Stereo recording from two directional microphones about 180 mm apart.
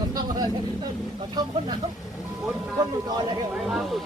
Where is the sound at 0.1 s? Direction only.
20° right (ahead or behind).